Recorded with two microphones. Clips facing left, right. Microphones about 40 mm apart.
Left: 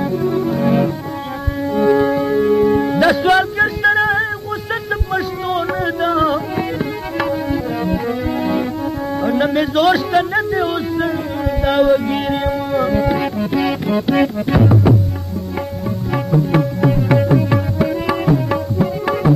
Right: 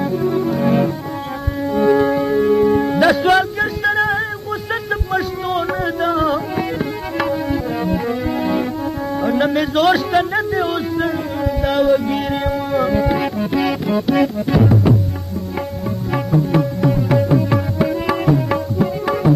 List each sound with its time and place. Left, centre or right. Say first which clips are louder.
0.0 s music: even; centre
7.8 s music: even; centre
13.9 s music: left 1 dB; centre
16.1 s music: left 1 dB; centre
16.5 s music: left 1 dB; centre
17.7 s tabla: even; centre